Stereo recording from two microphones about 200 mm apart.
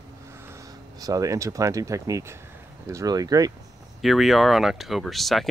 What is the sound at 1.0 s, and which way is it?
Speech, 15° right (ahead or behind).